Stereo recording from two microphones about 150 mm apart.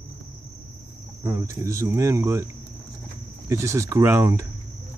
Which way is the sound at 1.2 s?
20° right (ahead or behind).